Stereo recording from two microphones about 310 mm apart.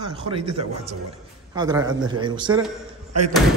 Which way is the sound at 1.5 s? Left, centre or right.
Centre.